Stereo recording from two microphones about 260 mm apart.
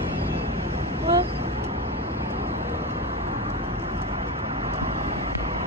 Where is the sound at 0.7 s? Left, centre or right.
Right.